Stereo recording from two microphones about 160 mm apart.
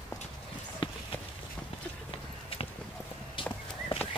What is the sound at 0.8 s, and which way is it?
Clip-clop, 30° left (ahead or behind).